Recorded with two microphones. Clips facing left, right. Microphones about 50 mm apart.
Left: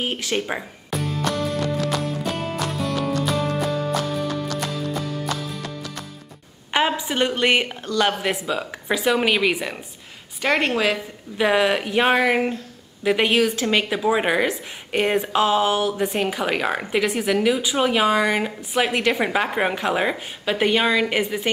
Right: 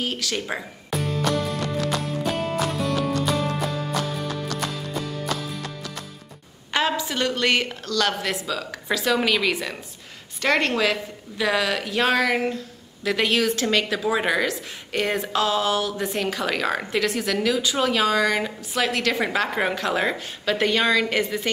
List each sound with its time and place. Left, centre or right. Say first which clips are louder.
0.0 s speech: left 3 dB; left
0.6 s music: even; centre
6.7 s speech: left 2 dB; left
11.3 s speech: left 4 dB; left